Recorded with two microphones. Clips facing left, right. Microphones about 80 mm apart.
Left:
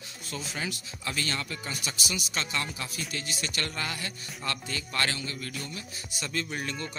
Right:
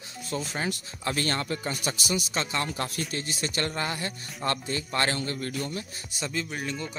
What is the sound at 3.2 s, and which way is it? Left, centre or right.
Speech, right.